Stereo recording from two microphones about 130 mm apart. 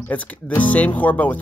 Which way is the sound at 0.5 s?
10° left (ahead or behind).